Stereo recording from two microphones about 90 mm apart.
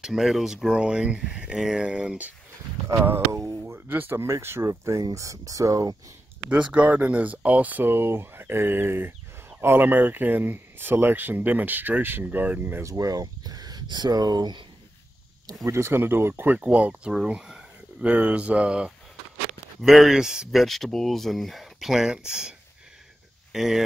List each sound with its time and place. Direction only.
0.0 s speech: 5° right (ahead or behind)
3.6 s speech: 20° right (ahead or behind); by 5.9 s 40° right (ahead or behind)
6.5 s speech: 15° right (ahead or behind)
12.8 s speech: 40° right (ahead or behind)
15.4 s speech: 30° right (ahead or behind)
16.5 s speech: 15° right (ahead or behind)